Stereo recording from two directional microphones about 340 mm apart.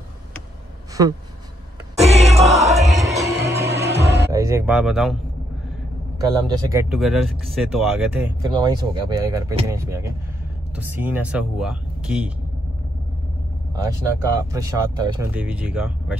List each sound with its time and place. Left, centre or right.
2.0 s music: centre
4.0 s music: right
4.3 s speech: centre
6.4 s speech: centre
13.7 s speech: centre